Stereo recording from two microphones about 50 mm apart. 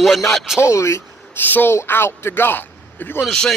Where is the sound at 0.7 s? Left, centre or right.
Left.